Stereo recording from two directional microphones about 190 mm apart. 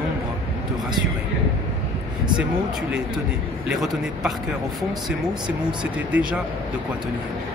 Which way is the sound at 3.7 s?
Centre (ahead or behind).